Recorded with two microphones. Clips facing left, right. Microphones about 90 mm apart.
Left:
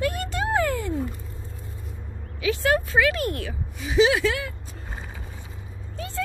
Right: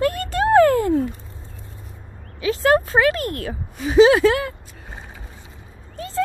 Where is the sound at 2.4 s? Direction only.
35° right (ahead or behind).